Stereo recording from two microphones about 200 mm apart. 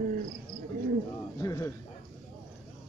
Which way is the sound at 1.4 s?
15° left (ahead or behind).